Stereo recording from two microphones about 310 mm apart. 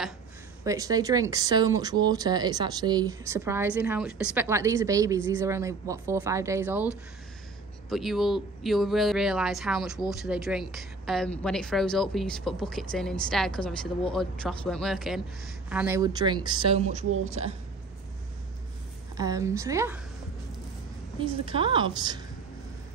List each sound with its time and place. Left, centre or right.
0.7 s speech: centre
7.9 s a woman's voice: centre
19.1 s speech: centre
21.2 s speech: centre